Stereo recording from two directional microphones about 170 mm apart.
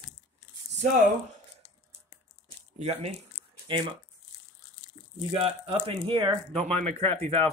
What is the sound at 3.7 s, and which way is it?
Speech, 30° right (ahead or behind).